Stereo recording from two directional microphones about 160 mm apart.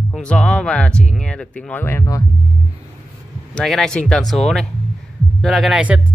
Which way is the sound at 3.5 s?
Centre (ahead or behind).